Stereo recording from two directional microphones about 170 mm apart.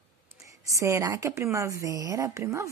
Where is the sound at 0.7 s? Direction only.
15° right (ahead or behind).